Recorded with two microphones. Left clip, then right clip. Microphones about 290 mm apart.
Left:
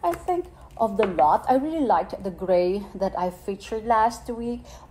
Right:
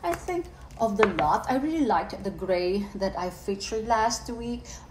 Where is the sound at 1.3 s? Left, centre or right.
Left.